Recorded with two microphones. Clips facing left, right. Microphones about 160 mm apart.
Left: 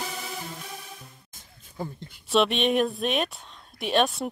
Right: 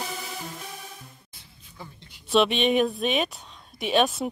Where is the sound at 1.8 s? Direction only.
45° left (ahead or behind).